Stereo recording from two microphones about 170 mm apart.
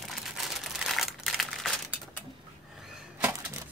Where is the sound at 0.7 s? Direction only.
Centre (ahead or behind).